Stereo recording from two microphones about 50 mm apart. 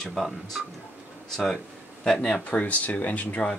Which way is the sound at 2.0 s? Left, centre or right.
Centre.